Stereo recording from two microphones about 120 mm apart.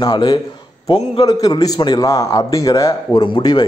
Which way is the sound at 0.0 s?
40° left (ahead or behind).